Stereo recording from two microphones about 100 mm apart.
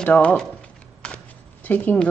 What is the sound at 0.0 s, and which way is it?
Speech, 15° left (ahead or behind).